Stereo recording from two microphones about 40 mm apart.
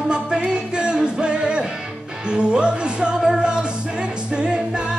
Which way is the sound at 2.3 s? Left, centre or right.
Right.